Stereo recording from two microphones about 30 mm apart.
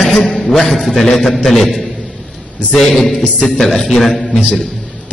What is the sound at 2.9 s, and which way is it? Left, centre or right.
A man's voice, centre.